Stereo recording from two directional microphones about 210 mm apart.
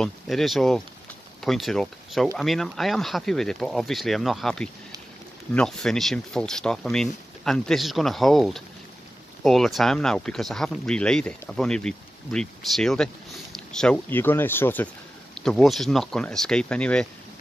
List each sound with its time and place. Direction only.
0.0 s speech: centre (ahead or behind)